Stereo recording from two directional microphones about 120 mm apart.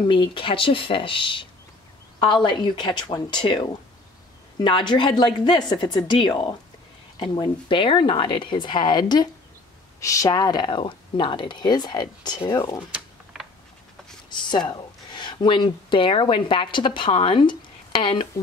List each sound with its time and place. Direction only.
0.1 s speech: 45° left (ahead or behind)
9.9 s speech: 25° left (ahead or behind)
12.9 s typing: 5° right (ahead or behind)
14.5 s speech: 35° left (ahead or behind)